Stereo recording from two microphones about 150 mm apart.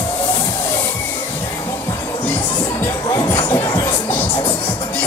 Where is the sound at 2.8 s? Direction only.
20° left (ahead or behind).